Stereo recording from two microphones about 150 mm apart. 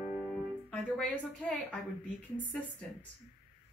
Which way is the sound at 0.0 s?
10° right (ahead or behind).